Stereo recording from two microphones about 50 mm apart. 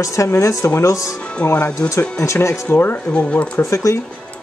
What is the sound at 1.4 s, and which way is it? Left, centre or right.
Speech, left.